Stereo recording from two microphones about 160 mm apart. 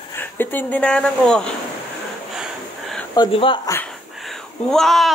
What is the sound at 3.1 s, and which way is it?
Speech, 30° left (ahead or behind).